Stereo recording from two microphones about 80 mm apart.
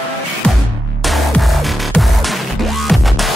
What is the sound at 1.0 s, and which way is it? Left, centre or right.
Music, centre.